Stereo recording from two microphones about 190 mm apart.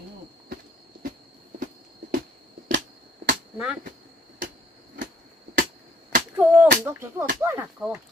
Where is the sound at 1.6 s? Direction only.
45° right (ahead or behind).